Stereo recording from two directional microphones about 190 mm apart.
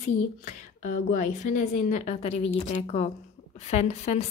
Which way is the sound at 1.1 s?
40° left (ahead or behind).